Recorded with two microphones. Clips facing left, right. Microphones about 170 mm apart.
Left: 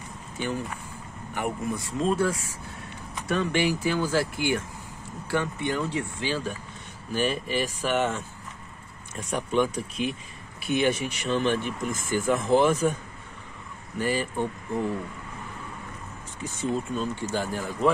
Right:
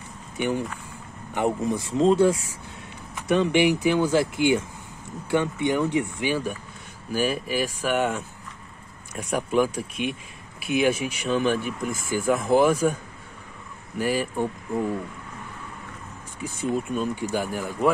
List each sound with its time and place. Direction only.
0.4 s speech: 20° right (ahead or behind)
13.9 s speech: 5° right (ahead or behind)
16.3 s speech: 10° right (ahead or behind)